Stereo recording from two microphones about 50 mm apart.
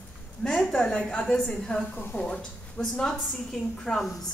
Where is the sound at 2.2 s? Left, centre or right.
Centre.